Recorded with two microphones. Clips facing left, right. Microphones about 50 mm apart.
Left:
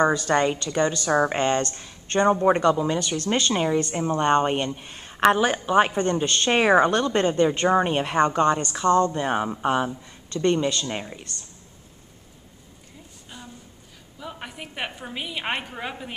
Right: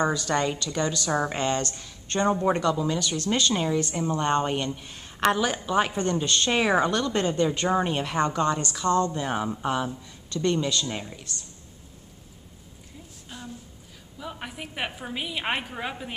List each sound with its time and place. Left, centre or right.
0.1 s speech: left
8.4 s a woman's voice: centre
9.1 s speech: left
13.3 s a sound: centre
14.2 s a woman's voice: centre